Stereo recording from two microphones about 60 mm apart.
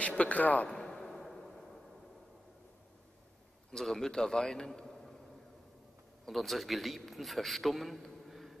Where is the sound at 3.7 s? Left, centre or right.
Centre.